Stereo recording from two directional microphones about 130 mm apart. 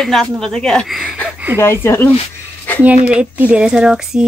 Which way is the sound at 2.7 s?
10° left (ahead or behind).